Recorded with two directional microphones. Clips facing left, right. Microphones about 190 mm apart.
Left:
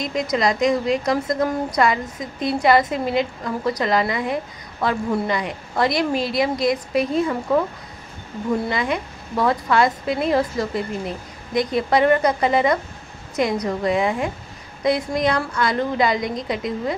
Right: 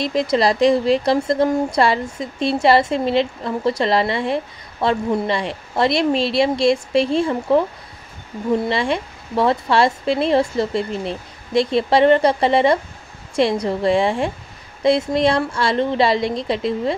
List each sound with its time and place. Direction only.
0.0 s speech: 30° right (ahead or behind)